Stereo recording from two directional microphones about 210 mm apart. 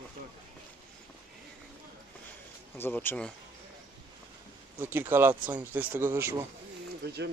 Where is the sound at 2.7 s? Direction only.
10° left (ahead or behind).